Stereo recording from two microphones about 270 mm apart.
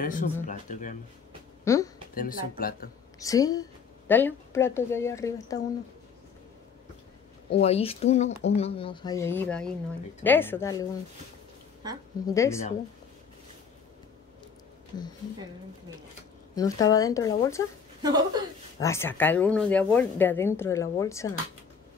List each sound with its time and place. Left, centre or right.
0.0 s speech: left
1.6 s speech: centre
2.1 s speech: left
3.2 s speech: centre
7.5 s speech: left
12.3 s speech: centre
16.5 s speech: centre
18.0 s a woman's voice: centre
18.8 s speech: centre